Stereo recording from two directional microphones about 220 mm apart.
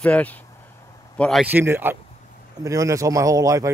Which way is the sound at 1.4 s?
10° right (ahead or behind).